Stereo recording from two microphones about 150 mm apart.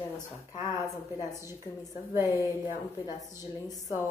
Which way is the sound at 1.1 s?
20° right (ahead or behind).